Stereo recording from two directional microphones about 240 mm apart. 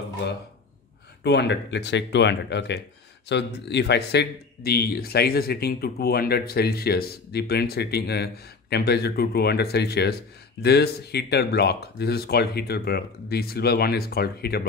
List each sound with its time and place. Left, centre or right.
1.2 s a man's voice: left